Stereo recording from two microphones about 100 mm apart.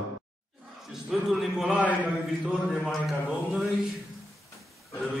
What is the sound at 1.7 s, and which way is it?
Speech, 15° right (ahead or behind).